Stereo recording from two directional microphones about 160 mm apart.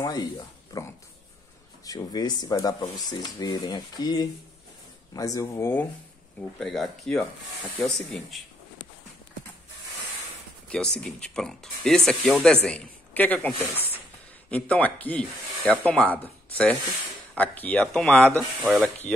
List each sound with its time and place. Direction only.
0.0 s speech: 25° left (ahead or behind)
6.6 s speech: centre (ahead or behind)
10.7 s a man's voice: 5° left (ahead or behind)
14.5 s speech: 10° left (ahead or behind)
18.6 s speech: 10° right (ahead or behind)